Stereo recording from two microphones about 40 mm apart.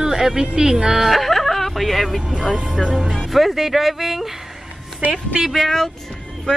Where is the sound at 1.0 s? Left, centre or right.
Centre.